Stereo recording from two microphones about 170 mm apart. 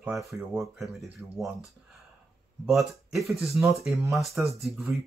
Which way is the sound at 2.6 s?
Centre (ahead or behind).